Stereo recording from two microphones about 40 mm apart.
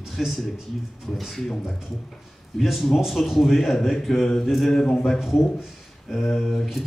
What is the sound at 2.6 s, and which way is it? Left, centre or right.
A man's voice, centre.